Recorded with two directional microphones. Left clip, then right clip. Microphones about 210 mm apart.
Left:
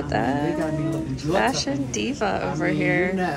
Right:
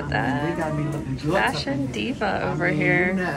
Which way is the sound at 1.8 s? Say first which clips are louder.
Left 1 dB; 10° left (ahead or behind).